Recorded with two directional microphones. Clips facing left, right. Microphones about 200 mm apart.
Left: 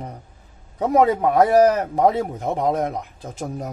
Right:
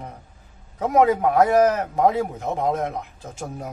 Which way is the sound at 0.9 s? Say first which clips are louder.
Left 1 dB; 35° left (ahead or behind).